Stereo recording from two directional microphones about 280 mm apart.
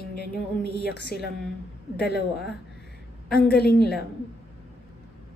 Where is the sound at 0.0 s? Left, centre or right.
Left.